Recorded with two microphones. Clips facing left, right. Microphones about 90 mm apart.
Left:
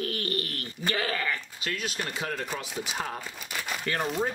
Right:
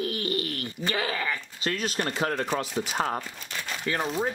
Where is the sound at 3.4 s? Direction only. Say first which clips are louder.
Left 1 dB; 10° left (ahead or behind).